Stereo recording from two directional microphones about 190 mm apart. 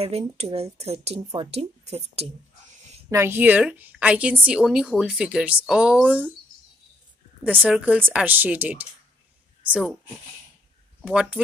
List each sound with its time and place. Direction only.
0.0 s speech: 30° right (ahead or behind)
3.1 s a woman's voice: 15° right (ahead or behind)
7.4 s a woman's voice: 10° right (ahead or behind)
11.0 s speech: 5° right (ahead or behind)